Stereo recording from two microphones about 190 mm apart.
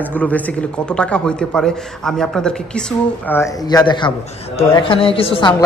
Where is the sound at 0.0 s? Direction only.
5° left (ahead or behind).